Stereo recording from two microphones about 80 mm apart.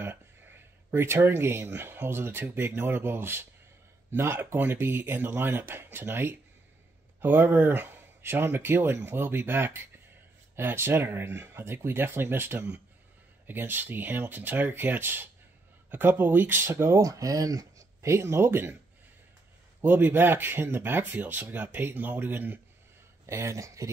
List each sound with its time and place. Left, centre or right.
0.0 s speech: right
16.7 s speech: right
19.8 s speech: right
23.2 s speech: right